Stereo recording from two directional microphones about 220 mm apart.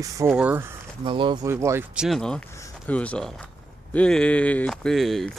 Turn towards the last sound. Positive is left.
turn(degrees=0)  # may be behind; listen again after turning